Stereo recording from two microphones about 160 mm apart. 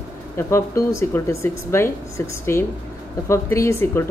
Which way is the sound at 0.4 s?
15° left (ahead or behind).